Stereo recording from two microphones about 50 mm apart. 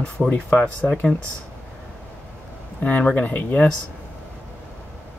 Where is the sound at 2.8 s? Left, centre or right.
Left.